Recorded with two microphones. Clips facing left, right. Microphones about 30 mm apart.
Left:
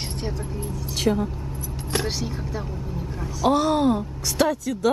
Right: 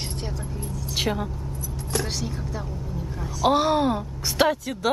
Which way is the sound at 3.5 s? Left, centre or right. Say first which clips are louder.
Left 1 dB; centre.